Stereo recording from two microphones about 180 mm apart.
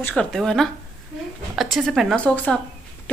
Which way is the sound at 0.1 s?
Centre (ahead or behind).